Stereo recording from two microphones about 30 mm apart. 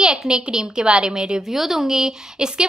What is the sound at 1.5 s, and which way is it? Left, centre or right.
A woman's voice, centre.